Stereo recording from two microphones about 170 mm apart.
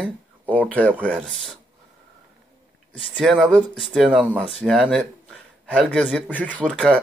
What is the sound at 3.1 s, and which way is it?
A man's voice, centre (ahead or behind).